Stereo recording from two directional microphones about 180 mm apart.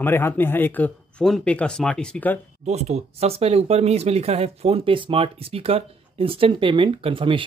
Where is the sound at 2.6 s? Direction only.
35° right (ahead or behind).